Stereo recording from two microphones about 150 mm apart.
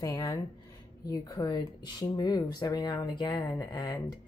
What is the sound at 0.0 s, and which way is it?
A woman's voice, 25° left (ahead or behind).